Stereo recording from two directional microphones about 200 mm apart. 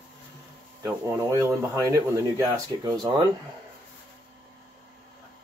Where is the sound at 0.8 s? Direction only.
15° right (ahead or behind).